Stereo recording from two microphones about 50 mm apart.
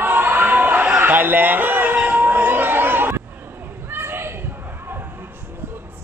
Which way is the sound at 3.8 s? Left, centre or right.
Right.